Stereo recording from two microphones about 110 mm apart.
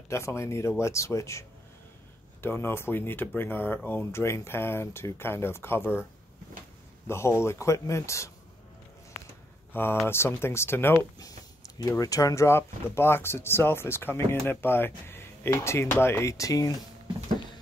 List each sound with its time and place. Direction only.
0.1 s speech: 25° left (ahead or behind)
2.4 s speech: 20° left (ahead or behind)
7.1 s speech: 25° left (ahead or behind)
9.7 s a sound: 20° left (ahead or behind)
10.0 s speech: 20° left (ahead or behind)
11.1 s a sound: 35° left (ahead or behind)
12.0 s speech: 30° left (ahead or behind)